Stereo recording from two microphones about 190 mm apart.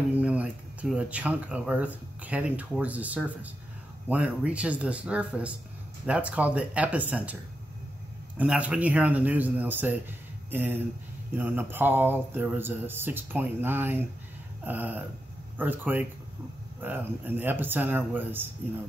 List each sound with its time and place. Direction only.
0.2 s speech: 5° right (ahead or behind)
8.4 s speech: 5° right (ahead or behind)